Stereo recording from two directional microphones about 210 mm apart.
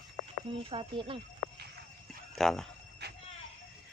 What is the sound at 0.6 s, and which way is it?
Speech, 25° right (ahead or behind).